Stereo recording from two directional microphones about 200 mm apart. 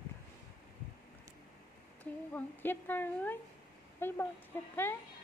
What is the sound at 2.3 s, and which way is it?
Speech, 10° left (ahead or behind).